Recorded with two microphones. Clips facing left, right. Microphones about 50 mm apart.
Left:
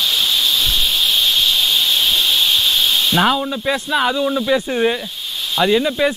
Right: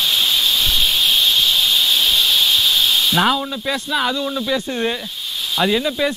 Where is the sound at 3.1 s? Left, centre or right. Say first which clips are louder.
Left 1 dB; centre.